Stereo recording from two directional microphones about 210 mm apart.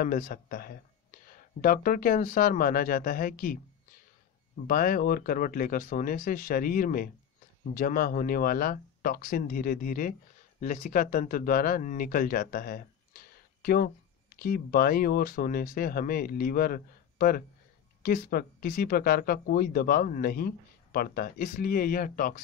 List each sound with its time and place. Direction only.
0.0 s speech: 40° left (ahead or behind)
4.6 s speech: 40° left (ahead or behind)